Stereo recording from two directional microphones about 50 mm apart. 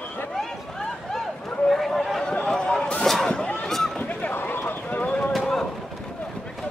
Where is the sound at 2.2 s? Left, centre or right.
Centre.